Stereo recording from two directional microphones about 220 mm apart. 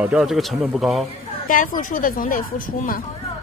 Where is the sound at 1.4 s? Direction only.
40° left (ahead or behind).